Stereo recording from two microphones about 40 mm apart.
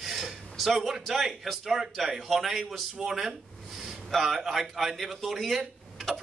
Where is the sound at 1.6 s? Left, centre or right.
Centre.